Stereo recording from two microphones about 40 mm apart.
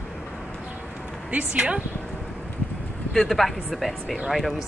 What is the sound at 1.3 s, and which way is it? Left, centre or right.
Speech, right.